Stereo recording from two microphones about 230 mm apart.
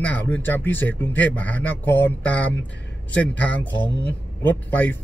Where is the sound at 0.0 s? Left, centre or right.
Centre.